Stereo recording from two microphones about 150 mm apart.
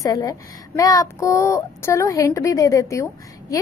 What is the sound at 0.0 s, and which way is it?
Speech, 25° left (ahead or behind).